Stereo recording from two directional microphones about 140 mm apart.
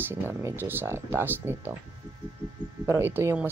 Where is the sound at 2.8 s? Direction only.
20° right (ahead or behind).